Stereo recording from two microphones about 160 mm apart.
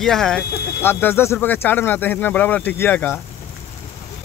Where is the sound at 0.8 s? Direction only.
15° left (ahead or behind).